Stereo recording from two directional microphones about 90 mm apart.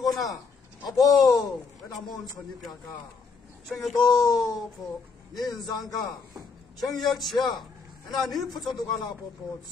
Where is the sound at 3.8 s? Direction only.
Centre (ahead or behind).